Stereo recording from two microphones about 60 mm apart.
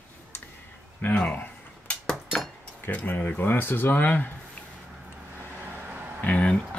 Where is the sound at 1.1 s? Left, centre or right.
Centre.